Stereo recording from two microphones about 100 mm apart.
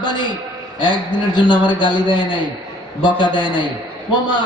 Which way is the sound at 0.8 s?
50° left (ahead or behind).